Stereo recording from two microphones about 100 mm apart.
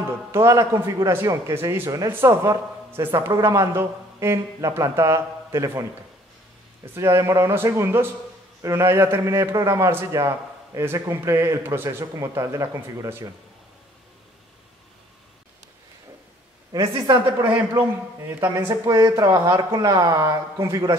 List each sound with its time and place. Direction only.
0.3 s a man's voice: 30° right (ahead or behind)
7.0 s a man's voice: 30° right (ahead or behind)
16.8 s a man's voice: 35° right (ahead or behind)
17.5 s a man's voice: 20° right (ahead or behind)
18.7 s a man's voice: 30° right (ahead or behind)